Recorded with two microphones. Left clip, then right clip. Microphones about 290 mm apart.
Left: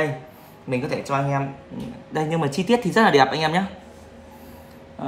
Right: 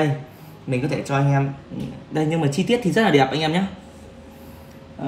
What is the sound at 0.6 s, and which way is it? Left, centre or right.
Speech, left.